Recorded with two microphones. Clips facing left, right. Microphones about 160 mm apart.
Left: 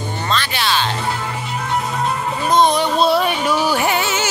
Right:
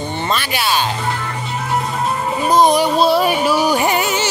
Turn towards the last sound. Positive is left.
turn(degrees=0)  # may be behind; listen again after turning